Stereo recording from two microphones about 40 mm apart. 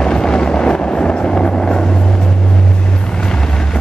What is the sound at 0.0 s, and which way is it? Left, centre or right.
Vehicle, centre.